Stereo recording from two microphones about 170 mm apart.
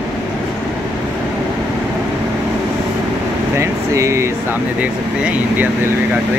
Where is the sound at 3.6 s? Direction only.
15° right (ahead or behind).